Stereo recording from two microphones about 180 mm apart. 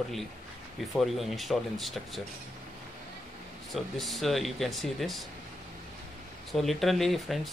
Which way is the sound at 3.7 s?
Centre (ahead or behind).